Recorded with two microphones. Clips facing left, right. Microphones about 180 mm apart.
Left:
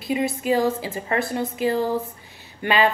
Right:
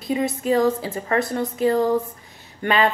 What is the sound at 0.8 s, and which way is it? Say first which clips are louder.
Speech: right 2 dB; 20° left (ahead or behind).